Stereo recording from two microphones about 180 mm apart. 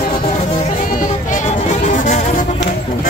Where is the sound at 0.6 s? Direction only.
45° left (ahead or behind).